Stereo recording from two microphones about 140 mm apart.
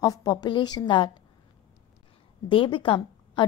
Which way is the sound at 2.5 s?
40° left (ahead or behind).